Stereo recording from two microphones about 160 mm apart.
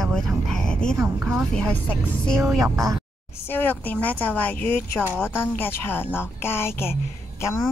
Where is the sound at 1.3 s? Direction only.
5° left (ahead or behind).